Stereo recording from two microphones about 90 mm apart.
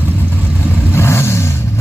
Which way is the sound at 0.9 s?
30° left (ahead or behind).